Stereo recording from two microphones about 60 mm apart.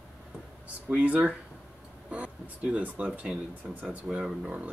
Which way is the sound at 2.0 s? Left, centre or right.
Right.